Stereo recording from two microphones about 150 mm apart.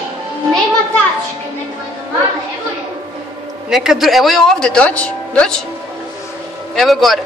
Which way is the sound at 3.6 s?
Centre (ahead or behind).